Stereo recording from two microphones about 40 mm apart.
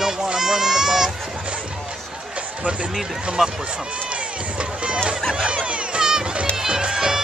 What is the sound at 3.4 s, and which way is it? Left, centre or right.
Speech, centre.